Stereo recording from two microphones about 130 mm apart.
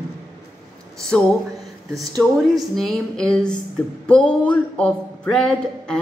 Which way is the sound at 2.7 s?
Centre (ahead or behind).